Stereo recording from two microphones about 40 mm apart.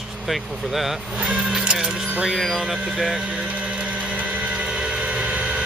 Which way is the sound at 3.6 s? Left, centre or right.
Right.